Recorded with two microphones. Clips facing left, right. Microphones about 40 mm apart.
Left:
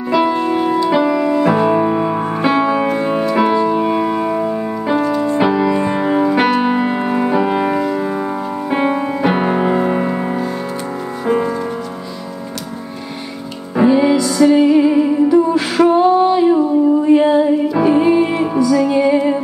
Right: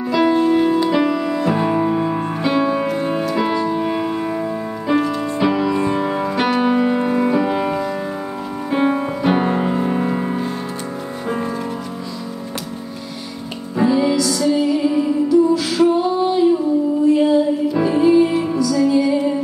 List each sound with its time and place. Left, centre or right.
0.1 s music: centre; by 2.9 s left
2.9 s music: left
5.1 s music: centre
5.4 s music: left
13.7 s music: left